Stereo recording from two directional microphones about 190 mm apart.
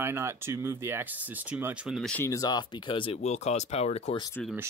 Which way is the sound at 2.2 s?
20° left (ahead or behind).